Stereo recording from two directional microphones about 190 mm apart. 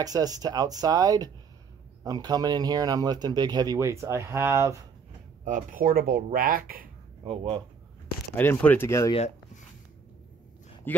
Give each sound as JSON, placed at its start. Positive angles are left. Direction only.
{"t": 0.0, "sound": "speech", "side_deg": -20}
{"t": 5.4, "sound": "speech", "side_deg": -45}
{"t": 7.2, "sound": "speech", "side_deg": -30}
{"t": 8.4, "sound": "speech", "side_deg": 10}
{"t": 10.9, "sound": "speech", "side_deg": 10}